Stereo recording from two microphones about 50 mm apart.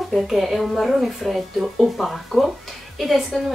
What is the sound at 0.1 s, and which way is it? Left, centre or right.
A woman's voice, centre.